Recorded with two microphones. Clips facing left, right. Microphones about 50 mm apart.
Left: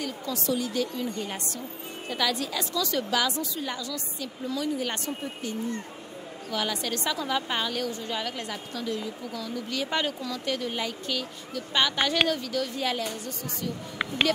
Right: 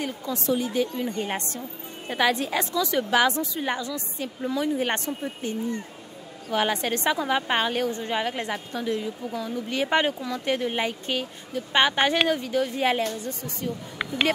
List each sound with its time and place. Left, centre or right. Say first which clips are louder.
0.0 s a woman's voice: right 2 dB; right